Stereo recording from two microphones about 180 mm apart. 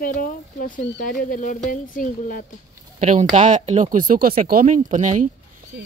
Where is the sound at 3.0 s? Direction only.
40° right (ahead or behind).